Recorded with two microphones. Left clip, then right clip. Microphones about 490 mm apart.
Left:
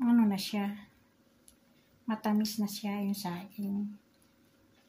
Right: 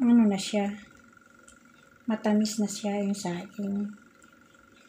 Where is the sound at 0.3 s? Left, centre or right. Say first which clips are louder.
Right 5 dB; left.